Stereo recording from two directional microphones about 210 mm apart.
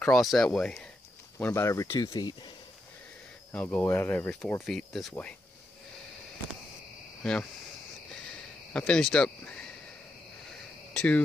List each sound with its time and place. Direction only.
0.0 s speech: centre (ahead or behind); by 2.5 s 20° left (ahead or behind)
3.5 s speech: 10° left (ahead or behind)
8.7 s speech: 5° left (ahead or behind)
10.9 s speech: 5° left (ahead or behind)